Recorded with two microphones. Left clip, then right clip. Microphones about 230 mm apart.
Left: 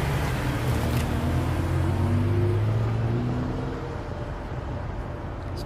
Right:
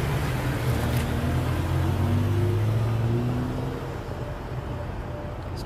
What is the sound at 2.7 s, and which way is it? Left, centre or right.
Vehicle, right.